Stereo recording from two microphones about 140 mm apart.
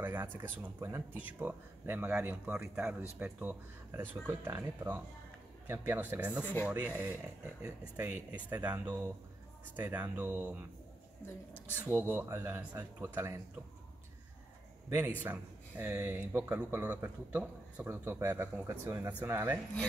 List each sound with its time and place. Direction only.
0.0 s a sound: 15° right (ahead or behind)
0.4 s speech: 20° right (ahead or behind)
6.4 s speech: 15° left (ahead or behind)
6.7 s speech: 10° right (ahead or behind)
8.5 s speech: 15° right (ahead or behind)
11.7 s speech: 15° right (ahead or behind)
14.9 s speech: 15° right (ahead or behind)